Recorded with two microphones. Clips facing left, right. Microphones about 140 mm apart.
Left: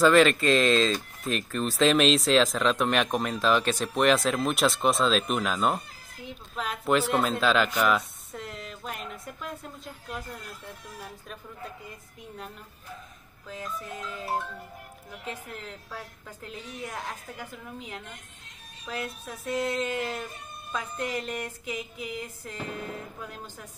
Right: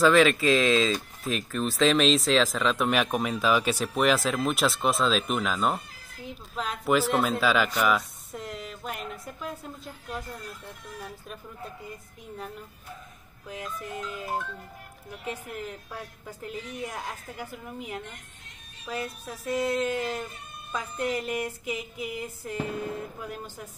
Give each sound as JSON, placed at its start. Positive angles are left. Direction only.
{"t": 0.0, "sound": "speech", "side_deg": 0}
{"t": 13.5, "sound": "speech", "side_deg": -15}